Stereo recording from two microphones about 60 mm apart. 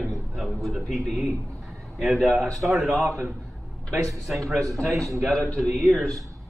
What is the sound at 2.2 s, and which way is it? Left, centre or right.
Speech, centre.